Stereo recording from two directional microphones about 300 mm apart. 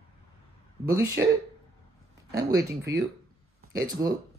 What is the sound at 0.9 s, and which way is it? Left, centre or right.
Speech, centre.